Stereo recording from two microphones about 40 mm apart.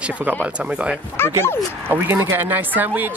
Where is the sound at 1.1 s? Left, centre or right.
Left.